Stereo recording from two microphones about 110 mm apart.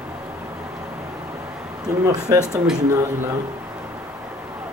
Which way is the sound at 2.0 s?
35° right (ahead or behind).